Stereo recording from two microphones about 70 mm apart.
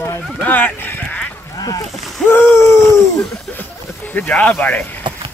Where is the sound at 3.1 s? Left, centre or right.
Left.